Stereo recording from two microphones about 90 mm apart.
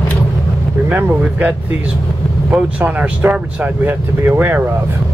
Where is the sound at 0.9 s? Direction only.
20° right (ahead or behind).